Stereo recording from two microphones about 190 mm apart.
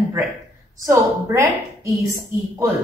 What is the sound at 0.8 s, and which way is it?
A woman's voice, 15° right (ahead or behind).